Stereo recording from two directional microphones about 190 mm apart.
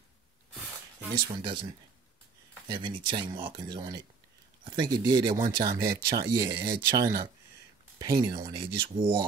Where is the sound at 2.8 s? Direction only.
25° right (ahead or behind).